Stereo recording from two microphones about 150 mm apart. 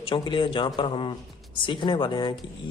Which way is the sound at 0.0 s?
30° left (ahead or behind).